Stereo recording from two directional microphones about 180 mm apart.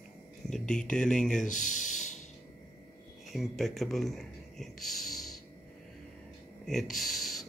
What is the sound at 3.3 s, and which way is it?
Speech, centre (ahead or behind).